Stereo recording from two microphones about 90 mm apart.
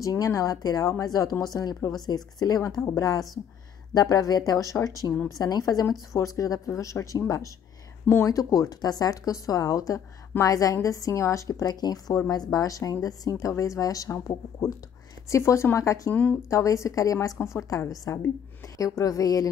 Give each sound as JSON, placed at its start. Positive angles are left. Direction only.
{"t": 0.0, "sound": "speech", "side_deg": 40}
{"t": 5.1, "sound": "speech", "side_deg": 5}
{"t": 5.4, "sound": "speech", "side_deg": 45}
{"t": 12.1, "sound": "speech", "side_deg": 35}
{"t": 16.1, "sound": "speech", "side_deg": 20}
{"t": 16.4, "sound": "speech", "side_deg": 35}